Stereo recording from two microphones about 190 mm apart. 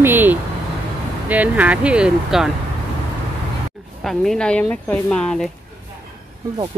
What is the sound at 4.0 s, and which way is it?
Speech, centre (ahead or behind).